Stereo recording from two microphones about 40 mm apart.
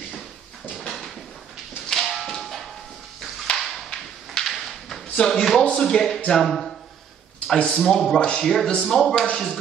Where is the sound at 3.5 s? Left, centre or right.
Left.